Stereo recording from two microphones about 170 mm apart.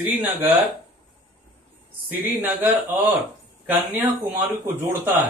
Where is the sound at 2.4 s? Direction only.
10° right (ahead or behind).